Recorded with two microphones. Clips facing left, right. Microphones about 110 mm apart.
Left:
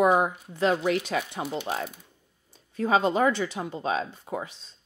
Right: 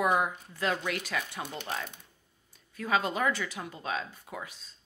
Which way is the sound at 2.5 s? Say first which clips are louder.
Left 6 dB; 30° left (ahead or behind).